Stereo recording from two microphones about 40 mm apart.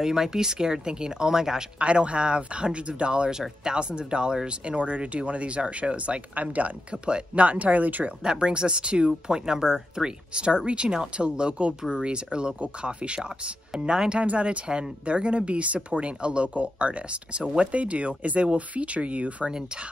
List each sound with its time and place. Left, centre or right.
0.0 s speech: centre
1.8 s speech: right
4.6 s speech: right
8.2 s speech: right